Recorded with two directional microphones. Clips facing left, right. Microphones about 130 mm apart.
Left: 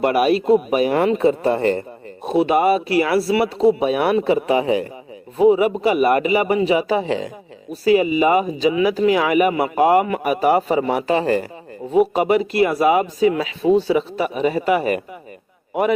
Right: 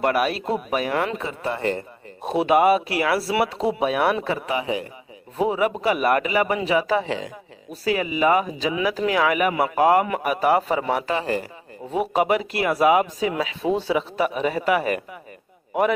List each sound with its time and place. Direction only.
0.0 s speech: 10° left (ahead or behind)
0.8 s speech: 20° left (ahead or behind)
1.1 s speech: 35° left (ahead or behind)
2.3 s speech: 5° right (ahead or behind)
4.5 s speech: 40° left (ahead or behind)
5.4 s speech: 5° left (ahead or behind)
11.9 s speech: centre (ahead or behind)